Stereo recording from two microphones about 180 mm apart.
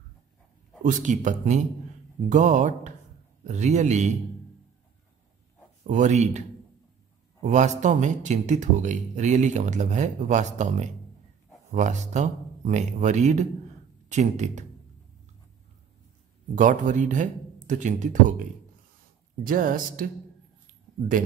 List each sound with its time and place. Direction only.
0.8 s speech: 45° right (ahead or behind)
5.9 s speech: 40° right (ahead or behind)
7.4 s speech: 40° right (ahead or behind)
16.5 s speech: 45° right (ahead or behind)